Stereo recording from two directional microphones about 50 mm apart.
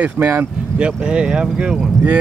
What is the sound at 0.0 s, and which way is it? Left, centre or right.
Speech, right.